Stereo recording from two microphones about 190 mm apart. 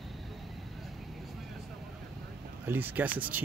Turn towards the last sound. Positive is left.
turn(degrees=-10)  # may be behind; listen again after turning